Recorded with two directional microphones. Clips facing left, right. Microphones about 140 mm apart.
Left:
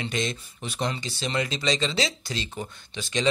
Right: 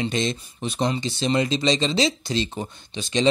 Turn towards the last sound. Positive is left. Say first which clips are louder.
# right 5 dB
turn(degrees=-25)  # may be behind; listen again after turning